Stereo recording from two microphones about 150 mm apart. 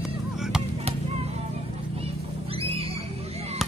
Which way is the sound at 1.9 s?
40° right (ahead or behind).